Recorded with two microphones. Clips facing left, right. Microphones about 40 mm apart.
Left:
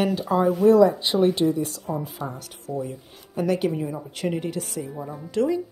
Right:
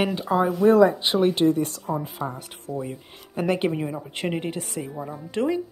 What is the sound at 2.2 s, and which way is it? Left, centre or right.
Speech, right.